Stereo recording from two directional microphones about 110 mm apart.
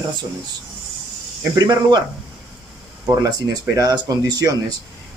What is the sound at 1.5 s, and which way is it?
Speech, 40° right (ahead or behind).